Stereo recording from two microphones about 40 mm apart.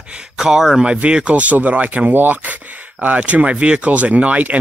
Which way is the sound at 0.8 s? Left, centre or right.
Right.